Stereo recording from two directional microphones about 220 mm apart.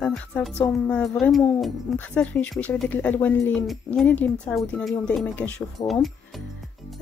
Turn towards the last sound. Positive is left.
turn(degrees=20)  # may be behind; listen again after turning